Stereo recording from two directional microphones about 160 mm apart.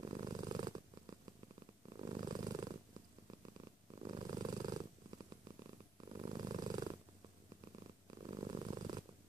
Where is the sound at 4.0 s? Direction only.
30° right (ahead or behind).